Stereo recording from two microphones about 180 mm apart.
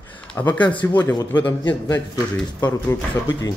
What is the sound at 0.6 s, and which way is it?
A man's voice, 25° left (ahead or behind).